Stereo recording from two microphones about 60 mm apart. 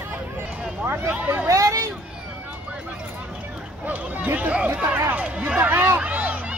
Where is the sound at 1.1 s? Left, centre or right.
Right.